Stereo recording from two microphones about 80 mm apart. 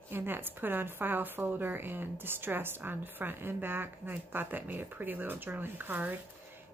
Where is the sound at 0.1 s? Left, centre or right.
Right.